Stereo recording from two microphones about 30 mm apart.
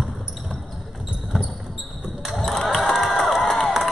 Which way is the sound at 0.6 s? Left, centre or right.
Centre.